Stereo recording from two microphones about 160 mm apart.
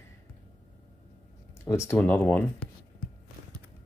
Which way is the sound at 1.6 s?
15° left (ahead or behind).